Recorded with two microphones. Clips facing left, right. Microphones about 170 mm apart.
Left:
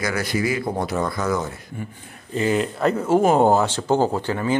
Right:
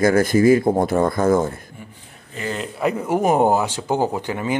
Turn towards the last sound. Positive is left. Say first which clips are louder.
# left 1 dB
turn(degrees=-15)  # may be behind; listen again after turning